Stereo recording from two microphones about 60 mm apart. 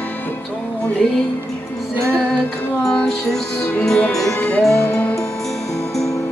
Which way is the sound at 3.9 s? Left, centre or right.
Centre.